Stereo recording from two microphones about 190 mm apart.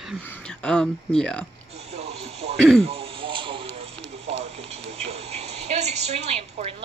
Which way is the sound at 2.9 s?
30° right (ahead or behind).